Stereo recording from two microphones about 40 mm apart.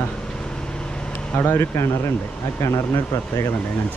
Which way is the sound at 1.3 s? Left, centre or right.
Left.